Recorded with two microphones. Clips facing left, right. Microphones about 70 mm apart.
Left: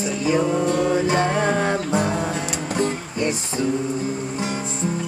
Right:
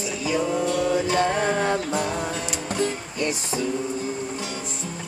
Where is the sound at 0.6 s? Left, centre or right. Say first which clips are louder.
Left 3 dB; left.